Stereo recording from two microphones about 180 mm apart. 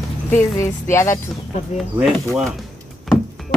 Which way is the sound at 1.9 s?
5° right (ahead or behind).